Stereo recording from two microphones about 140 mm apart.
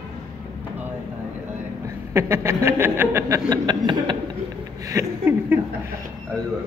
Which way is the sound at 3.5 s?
35° right (ahead or behind).